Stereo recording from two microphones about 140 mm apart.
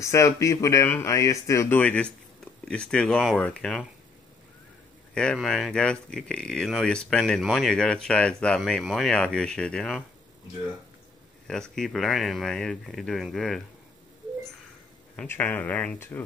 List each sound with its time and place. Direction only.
0.0 s speech: 20° left (ahead or behind); by 3.8 s 5° left (ahead or behind)
5.1 s speech: 5° left (ahead or behind)
11.7 s speech: centre (ahead or behind)
15.1 s speech: 15° left (ahead or behind)